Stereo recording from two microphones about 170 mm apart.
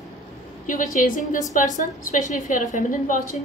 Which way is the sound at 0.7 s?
50° left (ahead or behind).